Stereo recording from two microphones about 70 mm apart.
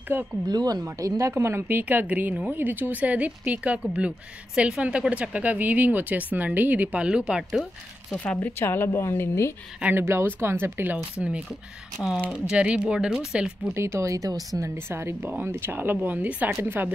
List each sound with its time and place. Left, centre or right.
0.1 s speech: right
0.5 s speech: right
0.8 s speech: right; by 7.6 s centre
8.5 s a woman's voice: left
9.9 s speech: right
11.1 s speech: centre
13.7 s speech: right
14.6 s speech: right